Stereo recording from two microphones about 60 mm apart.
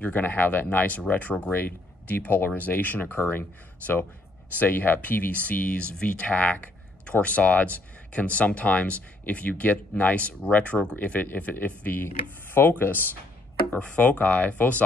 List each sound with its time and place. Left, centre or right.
0.0 s speech: left
11.0 s speech: left
13.7 s speech: left